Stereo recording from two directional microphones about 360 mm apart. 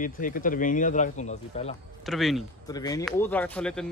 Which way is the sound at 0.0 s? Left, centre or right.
Left.